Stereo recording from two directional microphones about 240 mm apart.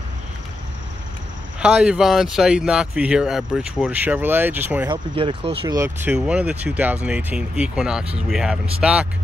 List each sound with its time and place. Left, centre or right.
1.6 s speech: centre
5.1 s speech: right; by 9.0 s centre